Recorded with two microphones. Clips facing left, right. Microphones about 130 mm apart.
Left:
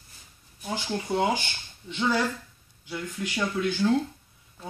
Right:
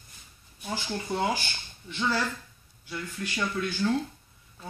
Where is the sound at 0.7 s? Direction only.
15° left (ahead or behind).